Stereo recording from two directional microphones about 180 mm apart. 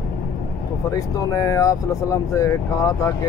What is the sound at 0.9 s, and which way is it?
Speech, 15° left (ahead or behind).